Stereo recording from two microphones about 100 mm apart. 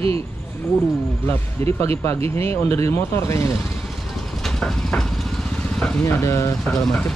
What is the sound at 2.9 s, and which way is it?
Speech, 30° left (ahead or behind).